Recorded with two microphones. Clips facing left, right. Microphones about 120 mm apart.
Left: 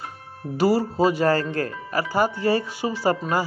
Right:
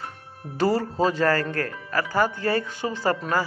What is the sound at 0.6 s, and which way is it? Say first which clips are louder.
Speech: left 2 dB; 10° left (ahead or behind).